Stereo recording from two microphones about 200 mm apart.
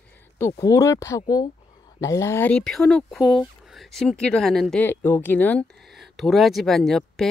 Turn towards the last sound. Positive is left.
turn(degrees=0)  # may be behind; listen again after turning